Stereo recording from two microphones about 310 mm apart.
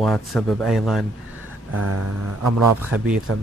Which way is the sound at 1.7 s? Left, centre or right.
Right.